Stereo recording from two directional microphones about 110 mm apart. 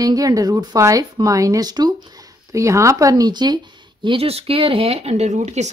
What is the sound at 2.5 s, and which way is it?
Speech, 30° right (ahead or behind).